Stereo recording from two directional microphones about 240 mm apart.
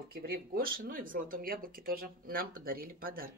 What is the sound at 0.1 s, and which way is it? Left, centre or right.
Speech, right.